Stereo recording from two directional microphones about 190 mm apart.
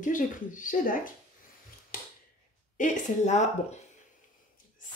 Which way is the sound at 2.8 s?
40° left (ahead or behind).